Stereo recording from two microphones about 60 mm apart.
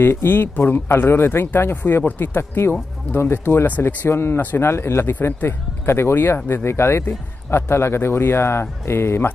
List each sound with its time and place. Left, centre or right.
0.0 s speech: left